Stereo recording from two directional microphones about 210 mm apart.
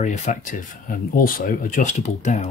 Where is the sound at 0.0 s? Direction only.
35° left (ahead or behind).